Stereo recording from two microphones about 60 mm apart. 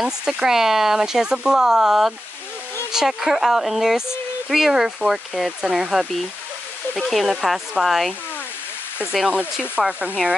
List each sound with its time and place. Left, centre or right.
0.0 s speech: centre
9.8 s speech: right